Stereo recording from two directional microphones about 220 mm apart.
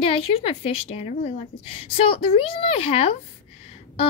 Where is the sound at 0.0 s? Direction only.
25° left (ahead or behind).